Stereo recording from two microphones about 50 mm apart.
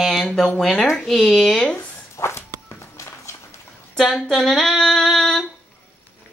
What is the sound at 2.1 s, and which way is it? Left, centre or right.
Walk, left.